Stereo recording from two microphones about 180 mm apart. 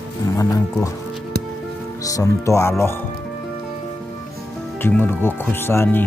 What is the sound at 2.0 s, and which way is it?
Speech, 15° left (ahead or behind).